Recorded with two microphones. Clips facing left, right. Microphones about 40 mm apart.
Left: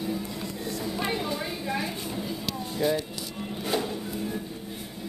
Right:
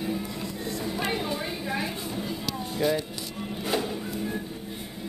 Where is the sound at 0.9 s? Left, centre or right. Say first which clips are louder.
Even; centre.